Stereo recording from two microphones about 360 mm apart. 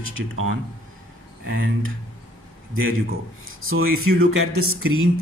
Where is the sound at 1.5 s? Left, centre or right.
Right.